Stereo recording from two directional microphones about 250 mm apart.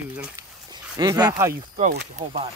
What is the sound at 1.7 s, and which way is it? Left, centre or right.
Speech, right.